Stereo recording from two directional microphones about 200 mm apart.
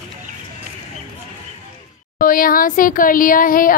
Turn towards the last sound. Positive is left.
turn(degrees=45)  # may be behind; listen again after turning